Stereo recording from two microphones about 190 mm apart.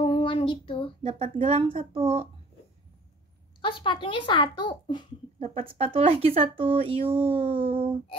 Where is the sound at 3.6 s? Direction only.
25° left (ahead or behind).